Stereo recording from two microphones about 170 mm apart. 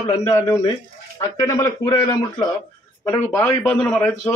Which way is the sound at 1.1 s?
20° left (ahead or behind).